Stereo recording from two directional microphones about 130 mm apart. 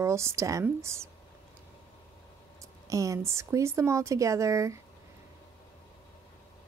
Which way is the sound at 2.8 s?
25° right (ahead or behind).